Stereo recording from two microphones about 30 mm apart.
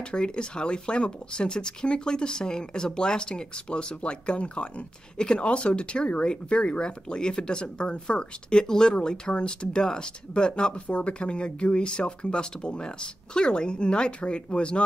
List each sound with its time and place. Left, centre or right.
0.0 s speech: left
5.1 s speech: left